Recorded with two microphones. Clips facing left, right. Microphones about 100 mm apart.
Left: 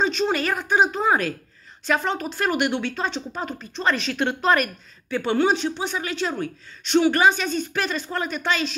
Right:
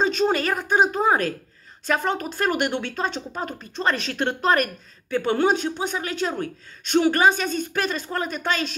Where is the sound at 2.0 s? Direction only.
45° right (ahead or behind).